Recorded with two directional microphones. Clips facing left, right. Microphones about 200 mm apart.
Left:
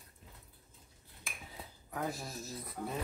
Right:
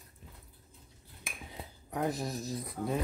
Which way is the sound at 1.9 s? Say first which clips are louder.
Right 6 dB; 20° right (ahead or behind).